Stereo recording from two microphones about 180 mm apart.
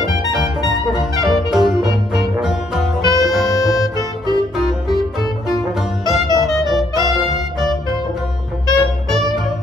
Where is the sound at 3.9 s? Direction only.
20° right (ahead or behind).